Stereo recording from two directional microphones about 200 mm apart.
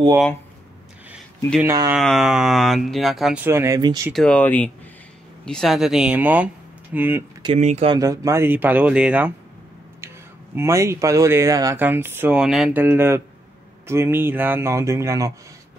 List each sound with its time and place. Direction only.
1.6 s speech: 10° right (ahead or behind)
2.0 s speech: centre (ahead or behind); by 4.1 s 15° right (ahead or behind)
4.1 s speech: 5° left (ahead or behind)
7.4 s speech: 35° right (ahead or behind)
8.0 s speech: 15° right (ahead or behind)